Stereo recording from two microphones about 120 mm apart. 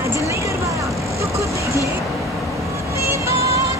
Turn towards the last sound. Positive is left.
turn(degrees=-25)  # may be behind; listen again after turning